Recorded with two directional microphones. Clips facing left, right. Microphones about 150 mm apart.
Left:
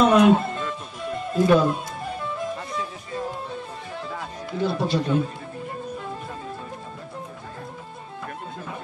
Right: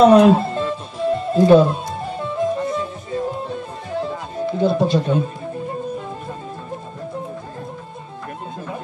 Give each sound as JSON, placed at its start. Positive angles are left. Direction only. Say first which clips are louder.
{"t": 0.0, "sound": "music", "louder": "right 5 dB", "side_deg": -35}
{"t": 4.0, "sound": "music", "louder": "right 10 dB", "side_deg": -20}